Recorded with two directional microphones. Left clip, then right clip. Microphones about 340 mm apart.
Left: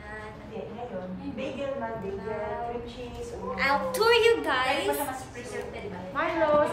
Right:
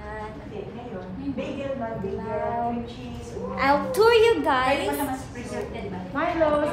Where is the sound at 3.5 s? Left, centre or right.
Centre.